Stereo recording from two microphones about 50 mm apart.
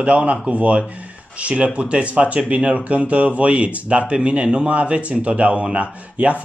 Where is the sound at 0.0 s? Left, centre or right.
Right.